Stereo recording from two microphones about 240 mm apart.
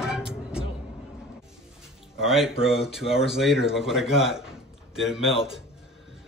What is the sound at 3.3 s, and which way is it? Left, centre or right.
Speech, centre.